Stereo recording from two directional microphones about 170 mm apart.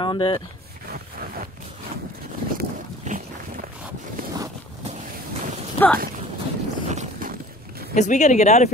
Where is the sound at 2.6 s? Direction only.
50° right (ahead or behind).